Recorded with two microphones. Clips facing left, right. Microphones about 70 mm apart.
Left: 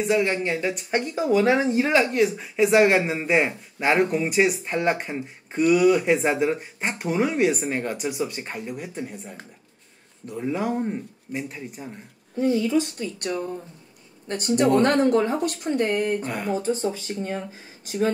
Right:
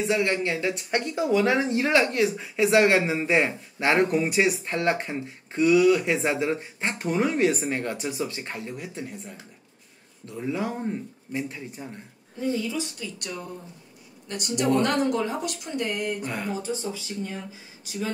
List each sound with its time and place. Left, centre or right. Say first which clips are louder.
0.0 s speech: left 2 dB; centre
12.5 s speech: left 7 dB; left
16.3 s speech: left 3 dB; centre
16.5 s speech: left 6 dB; left